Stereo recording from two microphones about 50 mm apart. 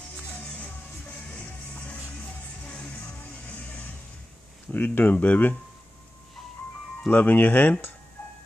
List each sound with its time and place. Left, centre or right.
1.3 s music: left
4.7 s speech: left
7.1 s speech: left
8.2 s music: left